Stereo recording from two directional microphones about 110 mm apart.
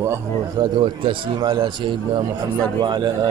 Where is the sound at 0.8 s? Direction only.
55° right (ahead or behind).